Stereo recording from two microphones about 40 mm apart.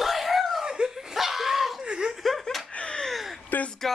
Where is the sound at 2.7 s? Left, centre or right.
Left.